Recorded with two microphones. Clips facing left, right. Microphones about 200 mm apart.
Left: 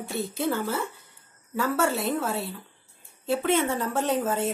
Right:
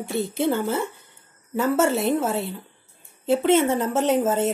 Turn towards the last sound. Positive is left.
turn(degrees=-25)  # may be behind; listen again after turning